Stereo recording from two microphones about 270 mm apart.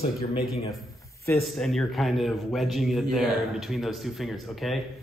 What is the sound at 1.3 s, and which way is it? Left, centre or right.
Speech, centre.